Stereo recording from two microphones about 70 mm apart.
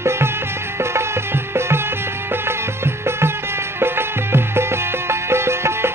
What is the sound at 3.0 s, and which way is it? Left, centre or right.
Music, right.